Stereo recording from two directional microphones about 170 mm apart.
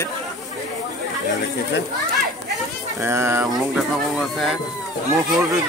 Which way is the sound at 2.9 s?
15° right (ahead or behind).